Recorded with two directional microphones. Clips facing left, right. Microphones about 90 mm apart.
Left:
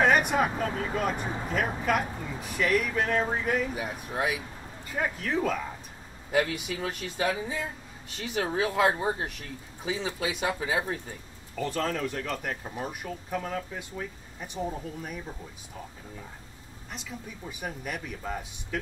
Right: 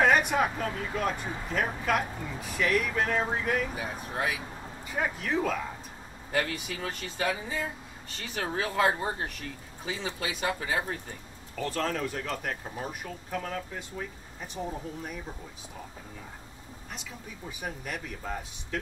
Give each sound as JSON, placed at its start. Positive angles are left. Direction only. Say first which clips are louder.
{"t": 0.0, "sound": "speech", "louder": "left 1 dB", "side_deg": 0}
{"t": 0.7, "sound": "speech", "louder": "left 2 dB", "side_deg": 15}
{"t": 0.9, "sound": "speech", "louder": "even", "side_deg": 5}
{"t": 1.2, "sound": "speech", "louder": "left 3 dB", "side_deg": 30}
{"t": 1.7, "sound": "speech", "louder": "left 1 dB", "side_deg": 5}
{"t": 4.9, "sound": "speech", "louder": "even", "side_deg": -5}
{"t": 16.9, "sound": "speech", "louder": "left 3 dB", "side_deg": 0}